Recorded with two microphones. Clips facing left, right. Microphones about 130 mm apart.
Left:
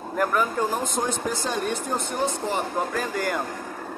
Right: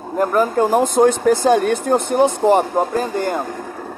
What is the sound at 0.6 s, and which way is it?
Speech, 55° right (ahead or behind).